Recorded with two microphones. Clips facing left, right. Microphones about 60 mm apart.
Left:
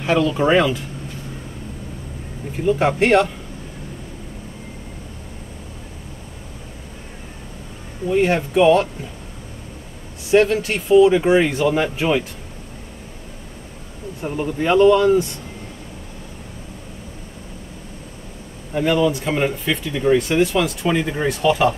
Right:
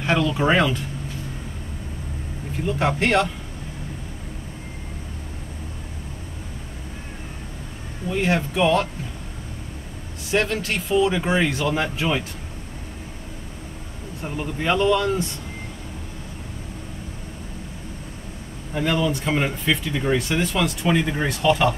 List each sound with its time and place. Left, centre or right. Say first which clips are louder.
0.0 s speech: left 3 dB; centre
2.6 s speech: left 5 dB; centre
8.1 s speech: left 5 dB; centre
10.5 s speech: left 7 dB; centre
14.3 s speech: left 5 dB; centre
18.8 s speech: left 5 dB; centre